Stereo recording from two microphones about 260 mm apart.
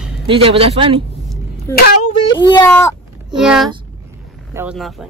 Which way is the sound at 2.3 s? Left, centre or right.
Centre.